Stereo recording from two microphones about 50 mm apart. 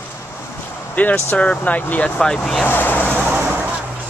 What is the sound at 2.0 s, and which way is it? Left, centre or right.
Speech, centre.